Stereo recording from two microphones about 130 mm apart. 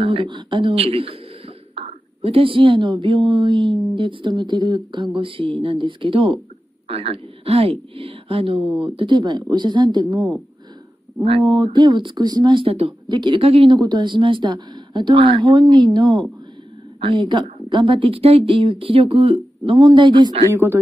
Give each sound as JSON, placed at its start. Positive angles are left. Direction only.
{"t": 0.0, "sound": "a woman's voice", "side_deg": -40}
{"t": 8.6, "sound": "speech", "side_deg": -5}
{"t": 8.9, "sound": "a woman's voice", "side_deg": -40}
{"t": 11.4, "sound": "a woman's voice", "side_deg": -35}
{"t": 13.7, "sound": "a woman's voice", "side_deg": -35}
{"t": 20.5, "sound": "speech", "side_deg": -20}